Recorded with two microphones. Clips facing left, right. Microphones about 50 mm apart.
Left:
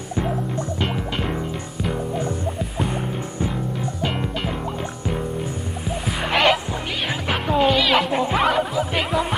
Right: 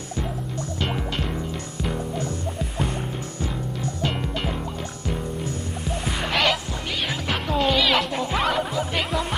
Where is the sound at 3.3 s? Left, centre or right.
Centre.